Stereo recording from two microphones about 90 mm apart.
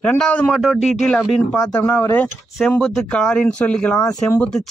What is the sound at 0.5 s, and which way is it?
Speech, centre (ahead or behind).